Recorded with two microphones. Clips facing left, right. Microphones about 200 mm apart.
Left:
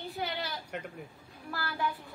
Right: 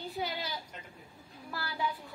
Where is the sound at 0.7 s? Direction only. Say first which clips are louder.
Left 10 dB; 70° left (ahead or behind).